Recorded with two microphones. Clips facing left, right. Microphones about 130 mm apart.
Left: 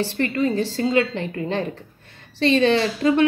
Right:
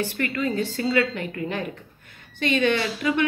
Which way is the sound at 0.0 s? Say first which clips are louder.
Left 4 dB; 25° left (ahead or behind).